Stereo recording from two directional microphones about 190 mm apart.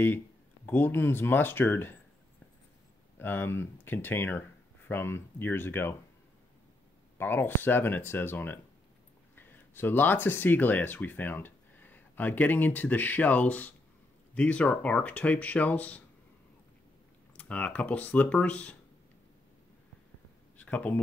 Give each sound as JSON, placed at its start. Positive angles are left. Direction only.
{"t": 0.7, "sound": "speech", "side_deg": 10}
{"t": 3.2, "sound": "speech", "side_deg": 10}
{"t": 7.2, "sound": "speech", "side_deg": 10}
{"t": 17.4, "sound": "speech", "side_deg": 5}
{"t": 20.5, "sound": "a sound", "side_deg": 10}